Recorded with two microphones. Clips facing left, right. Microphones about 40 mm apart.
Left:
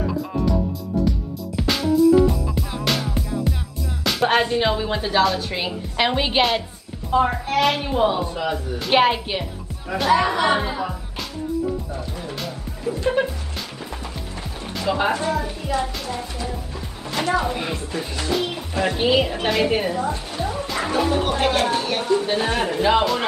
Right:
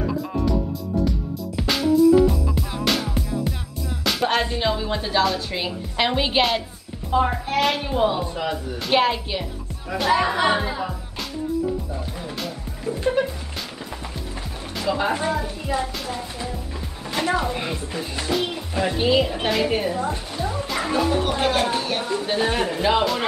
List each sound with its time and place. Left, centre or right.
0.0 s music: centre
4.4 s a woman's voice: centre
8.9 s a woman's voice: centre
9.8 s speech: centre
12.2 s music: centre
13.0 s music: left
14.9 s a woman's voice: centre
17.3 s speech: centre
18.8 s a woman's voice: centre
20.4 s music: centre
21.0 s speech: centre